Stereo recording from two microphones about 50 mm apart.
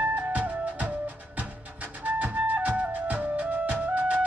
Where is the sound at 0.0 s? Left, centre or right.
Right.